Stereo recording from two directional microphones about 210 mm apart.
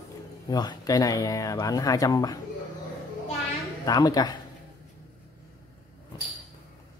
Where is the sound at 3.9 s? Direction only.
20° left (ahead or behind).